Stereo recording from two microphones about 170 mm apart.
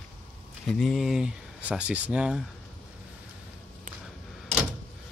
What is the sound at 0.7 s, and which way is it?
Speech, centre (ahead or behind).